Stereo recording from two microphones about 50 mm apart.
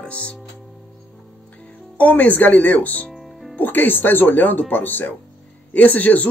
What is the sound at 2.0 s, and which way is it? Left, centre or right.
Speech, left.